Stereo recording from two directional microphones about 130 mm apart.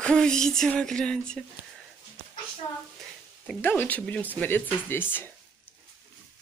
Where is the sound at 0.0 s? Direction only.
5° left (ahead or behind).